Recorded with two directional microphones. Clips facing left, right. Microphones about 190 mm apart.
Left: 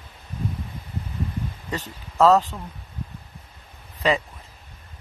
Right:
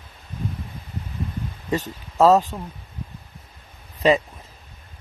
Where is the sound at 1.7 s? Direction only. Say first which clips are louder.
Right 9 dB; 15° right (ahead or behind).